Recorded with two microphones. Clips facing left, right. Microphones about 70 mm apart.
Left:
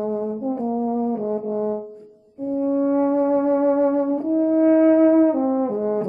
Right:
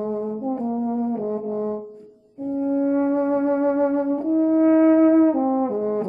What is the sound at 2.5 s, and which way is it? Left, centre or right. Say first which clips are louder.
French horn: left 1 dB; centre.